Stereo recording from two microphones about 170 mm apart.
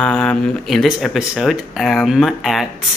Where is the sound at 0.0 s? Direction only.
5° left (ahead or behind).